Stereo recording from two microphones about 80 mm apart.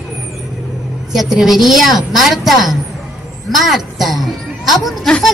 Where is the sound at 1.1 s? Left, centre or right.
Centre.